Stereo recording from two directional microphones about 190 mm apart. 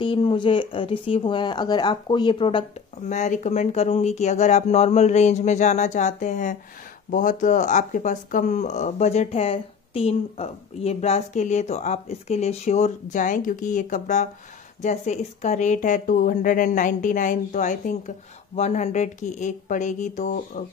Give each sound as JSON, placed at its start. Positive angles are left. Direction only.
{"t": 0.0, "sound": "speech", "side_deg": 25}
{"t": 3.1, "sound": "a woman's voice", "side_deg": 40}